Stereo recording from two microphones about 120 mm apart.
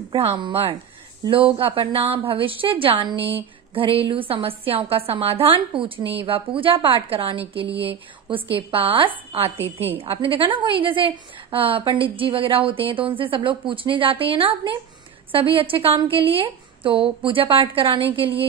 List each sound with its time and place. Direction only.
0.4 s a woman's voice: 50° right (ahead or behind)